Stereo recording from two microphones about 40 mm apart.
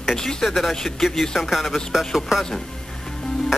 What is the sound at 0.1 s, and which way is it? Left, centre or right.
A woman's voice, centre.